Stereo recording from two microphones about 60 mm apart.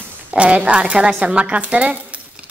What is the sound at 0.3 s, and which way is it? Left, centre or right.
A woman's voice, centre.